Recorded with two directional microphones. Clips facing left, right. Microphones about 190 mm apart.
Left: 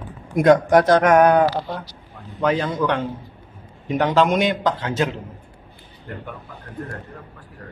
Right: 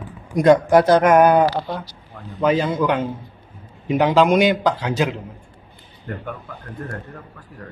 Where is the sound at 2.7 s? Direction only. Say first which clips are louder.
Right 2 dB; 5° right (ahead or behind).